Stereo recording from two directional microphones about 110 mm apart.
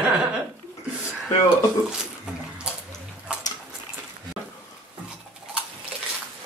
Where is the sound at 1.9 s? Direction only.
5° right (ahead or behind).